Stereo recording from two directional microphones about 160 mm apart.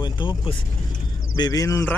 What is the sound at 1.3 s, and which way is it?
Speech, 25° left (ahead or behind).